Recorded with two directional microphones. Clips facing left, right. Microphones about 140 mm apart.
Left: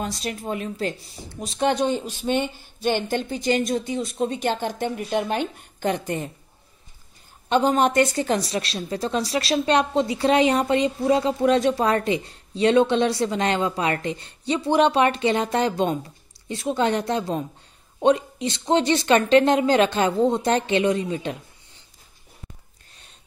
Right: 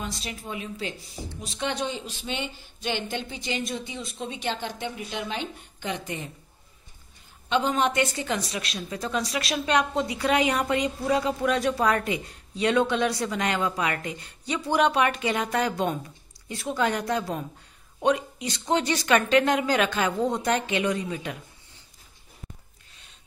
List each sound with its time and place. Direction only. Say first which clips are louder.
0.0 s a woman's voice: left 6 dB; 45° left (ahead or behind)
7.4 s a woman's voice: left 5 dB; 40° left (ahead or behind); by 21.4 s 25° left (ahead or behind)